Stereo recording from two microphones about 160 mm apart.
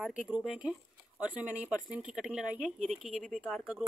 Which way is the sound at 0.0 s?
5° right (ahead or behind).